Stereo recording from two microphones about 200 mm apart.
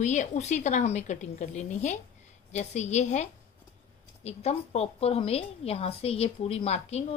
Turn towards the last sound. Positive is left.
turn(degrees=30)  # may be behind; listen again after turning